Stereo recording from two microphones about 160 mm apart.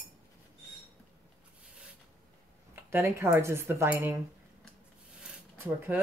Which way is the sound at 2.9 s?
15° right (ahead or behind).